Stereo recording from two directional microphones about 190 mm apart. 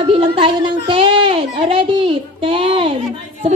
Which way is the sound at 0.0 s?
30° right (ahead or behind).